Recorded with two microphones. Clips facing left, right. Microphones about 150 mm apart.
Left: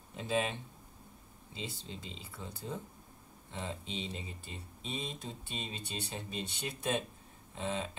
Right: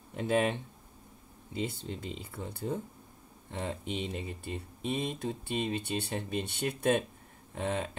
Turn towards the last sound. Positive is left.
turn(degrees=-55)  # may be behind; listen again after turning